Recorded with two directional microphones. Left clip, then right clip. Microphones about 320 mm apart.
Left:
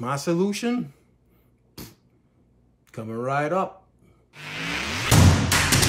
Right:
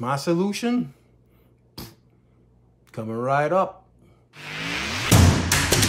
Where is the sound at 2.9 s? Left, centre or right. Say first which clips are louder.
Right 4 dB; centre.